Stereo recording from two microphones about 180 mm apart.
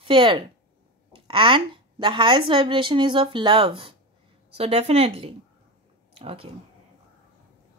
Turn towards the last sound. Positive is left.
turn(degrees=-30)  # may be behind; listen again after turning